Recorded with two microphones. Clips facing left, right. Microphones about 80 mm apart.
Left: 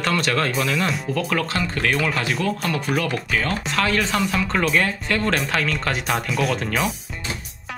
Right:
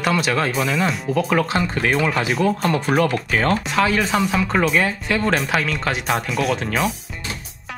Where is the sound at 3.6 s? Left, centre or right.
Centre.